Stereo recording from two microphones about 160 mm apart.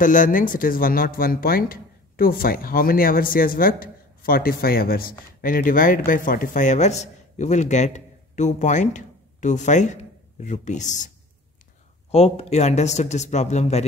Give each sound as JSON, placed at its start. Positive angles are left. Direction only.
{"t": 0.0, "sound": "a man's voice", "side_deg": 55}
{"t": 12.1, "sound": "a man's voice", "side_deg": 40}